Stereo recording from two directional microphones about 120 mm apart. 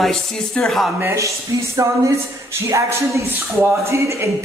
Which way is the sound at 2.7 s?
25° right (ahead or behind).